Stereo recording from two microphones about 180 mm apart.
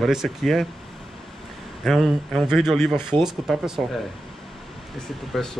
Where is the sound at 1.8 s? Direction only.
Centre (ahead or behind).